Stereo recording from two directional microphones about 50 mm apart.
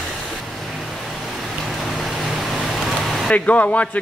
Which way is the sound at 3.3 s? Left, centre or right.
Left.